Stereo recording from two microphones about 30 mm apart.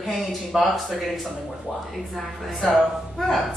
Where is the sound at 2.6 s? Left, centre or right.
Centre.